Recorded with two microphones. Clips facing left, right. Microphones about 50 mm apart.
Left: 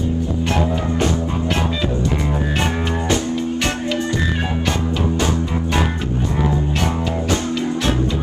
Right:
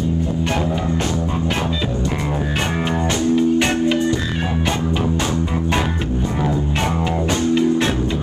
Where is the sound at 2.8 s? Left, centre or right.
Centre.